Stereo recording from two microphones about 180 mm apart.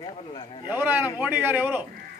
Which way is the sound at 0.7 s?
10° right (ahead or behind).